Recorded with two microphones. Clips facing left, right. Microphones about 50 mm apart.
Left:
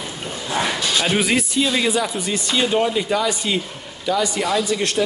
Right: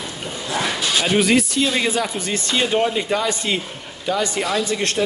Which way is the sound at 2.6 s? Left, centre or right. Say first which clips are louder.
Even; centre.